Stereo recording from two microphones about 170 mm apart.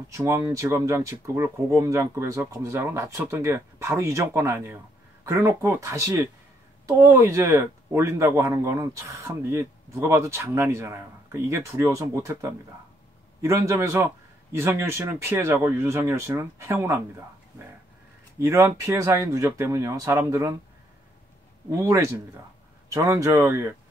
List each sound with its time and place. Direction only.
0.1 s speech: 15° right (ahead or behind)
18.4 s speech: 15° right (ahead or behind)
21.7 s speech: 15° right (ahead or behind)